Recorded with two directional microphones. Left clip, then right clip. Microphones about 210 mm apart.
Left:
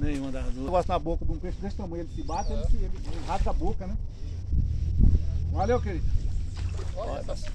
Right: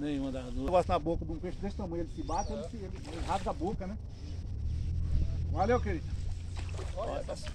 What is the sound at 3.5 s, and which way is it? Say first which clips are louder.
Speech: left 2 dB; 20° left (ahead or behind).